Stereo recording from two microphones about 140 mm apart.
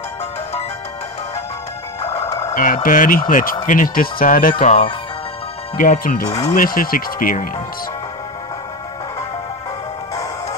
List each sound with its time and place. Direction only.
2.0 s music: 45° left (ahead or behind)
2.5 s speech: 70° left (ahead or behind)